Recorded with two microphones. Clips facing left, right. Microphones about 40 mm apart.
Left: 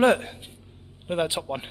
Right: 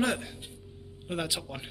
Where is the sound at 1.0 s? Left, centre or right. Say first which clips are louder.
Left 7 dB; left.